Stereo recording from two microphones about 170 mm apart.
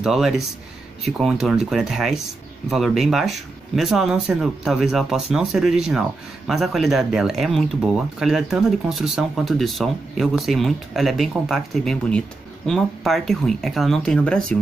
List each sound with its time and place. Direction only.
0.0 s speech: centre (ahead or behind)